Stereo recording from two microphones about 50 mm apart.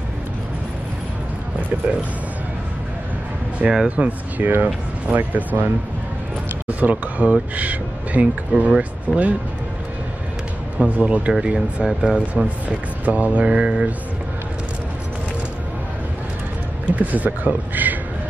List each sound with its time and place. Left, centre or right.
3.6 s speech: centre
6.7 s speech: right
10.8 s speech: right
12.6 s speech: right
16.8 s speech: right